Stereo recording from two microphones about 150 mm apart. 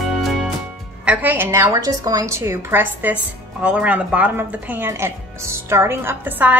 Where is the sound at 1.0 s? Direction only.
15° right (ahead or behind).